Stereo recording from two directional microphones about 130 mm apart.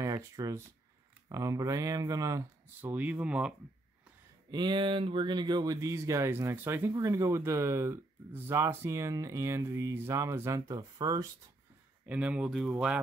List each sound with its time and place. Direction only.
0.0 s speech: 25° right (ahead or behind)
2.8 s speech: 15° right (ahead or behind)
4.5 s speech: 35° right (ahead or behind)
12.1 s speech: 10° right (ahead or behind)